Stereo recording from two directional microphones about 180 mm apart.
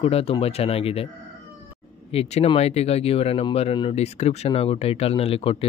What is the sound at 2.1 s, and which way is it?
Speech, 35° left (ahead or behind).